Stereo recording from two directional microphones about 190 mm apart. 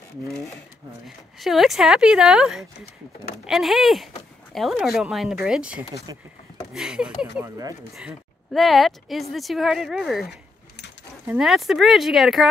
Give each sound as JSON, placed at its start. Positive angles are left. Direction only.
{"t": 1.0, "sound": "speech", "side_deg": 0}
{"t": 7.4, "sound": "speech", "side_deg": -20}
{"t": 8.5, "sound": "speech", "side_deg": 0}